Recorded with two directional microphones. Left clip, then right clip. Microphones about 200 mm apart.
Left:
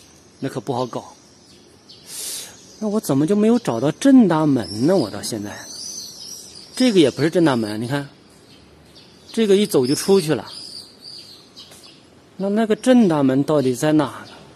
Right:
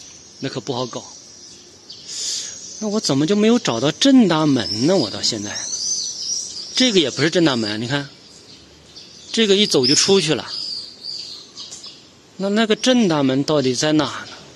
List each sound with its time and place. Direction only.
0.4 s speech: 10° left (ahead or behind)
2.1 s bird: 25° left (ahead or behind)
2.8 s speech: centre (ahead or behind)
6.7 s speech: centre (ahead or behind)
9.3 s speech: centre (ahead or behind)
12.4 s speech: centre (ahead or behind)